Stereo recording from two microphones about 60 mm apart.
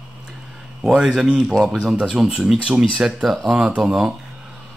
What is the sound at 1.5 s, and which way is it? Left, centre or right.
Speech, centre.